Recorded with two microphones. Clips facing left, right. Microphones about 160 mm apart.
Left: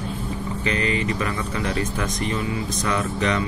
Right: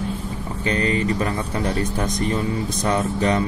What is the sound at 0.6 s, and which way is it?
Speech, 35° right (ahead or behind).